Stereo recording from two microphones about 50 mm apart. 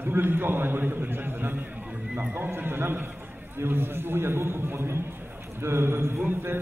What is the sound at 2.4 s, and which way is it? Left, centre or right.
A man's voice, right.